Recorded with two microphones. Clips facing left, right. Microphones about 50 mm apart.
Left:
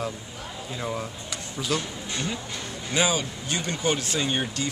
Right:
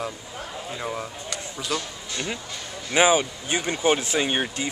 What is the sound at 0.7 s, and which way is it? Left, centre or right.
Speech, centre.